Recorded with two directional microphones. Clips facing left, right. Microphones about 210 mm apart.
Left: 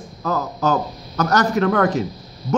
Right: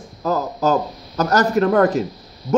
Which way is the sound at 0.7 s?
30° right (ahead or behind).